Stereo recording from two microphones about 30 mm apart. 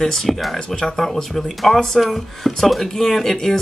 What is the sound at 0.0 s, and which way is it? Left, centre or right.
Speech, centre.